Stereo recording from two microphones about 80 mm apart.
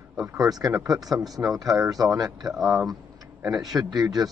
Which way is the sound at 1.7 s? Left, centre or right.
Right.